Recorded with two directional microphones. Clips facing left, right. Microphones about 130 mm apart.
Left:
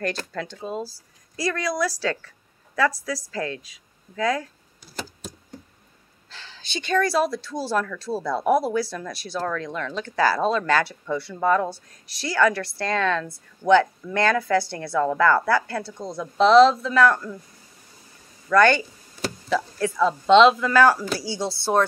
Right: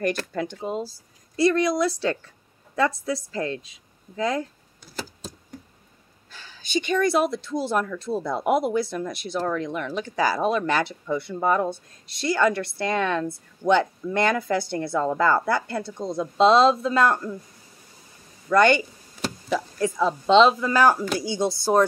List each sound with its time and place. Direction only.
0.3 s a woman's voice: 20° right (ahead or behind)
6.6 s speech: 15° right (ahead or behind)
18.5 s speech: 20° right (ahead or behind)